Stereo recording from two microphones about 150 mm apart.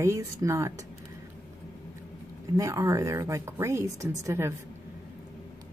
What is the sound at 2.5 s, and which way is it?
A woman's voice, 20° right (ahead or behind).